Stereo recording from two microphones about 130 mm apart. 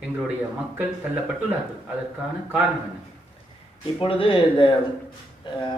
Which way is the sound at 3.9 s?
45° left (ahead or behind).